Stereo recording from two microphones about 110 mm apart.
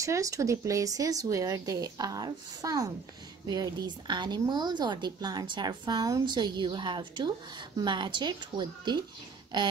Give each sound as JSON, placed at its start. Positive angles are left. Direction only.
{"t": 0.0, "sound": "a woman's voice", "side_deg": -30}